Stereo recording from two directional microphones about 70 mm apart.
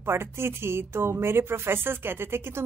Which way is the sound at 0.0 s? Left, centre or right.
Right.